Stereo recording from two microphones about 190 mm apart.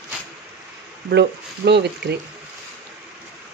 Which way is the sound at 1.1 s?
65° right (ahead or behind).